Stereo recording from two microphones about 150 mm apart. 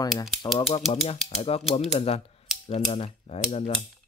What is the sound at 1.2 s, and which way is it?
Speech, 40° left (ahead or behind).